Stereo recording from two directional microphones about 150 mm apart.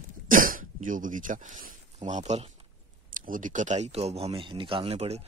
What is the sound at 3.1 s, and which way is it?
Speech, 65° right (ahead or behind).